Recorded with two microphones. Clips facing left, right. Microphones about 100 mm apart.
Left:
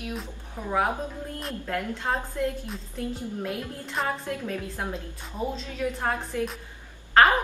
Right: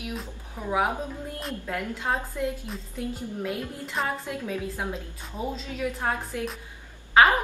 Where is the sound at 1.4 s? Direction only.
5° right (ahead or behind).